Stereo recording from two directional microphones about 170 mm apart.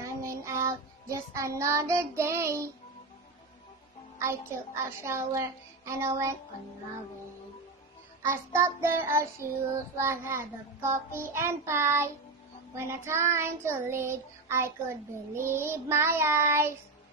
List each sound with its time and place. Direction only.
0.0 s child singing: 15° right (ahead or behind)
4.2 s child singing: 15° right (ahead or behind)
8.3 s child singing: 15° right (ahead or behind)